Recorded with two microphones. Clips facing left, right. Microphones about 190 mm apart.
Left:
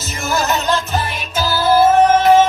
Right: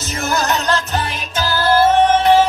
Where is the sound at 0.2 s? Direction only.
Centre (ahead or behind).